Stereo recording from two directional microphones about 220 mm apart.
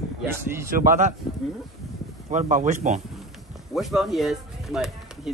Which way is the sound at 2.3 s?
35° right (ahead or behind).